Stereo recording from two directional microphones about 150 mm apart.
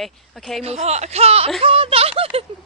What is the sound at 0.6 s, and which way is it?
Speech, 45° right (ahead or behind).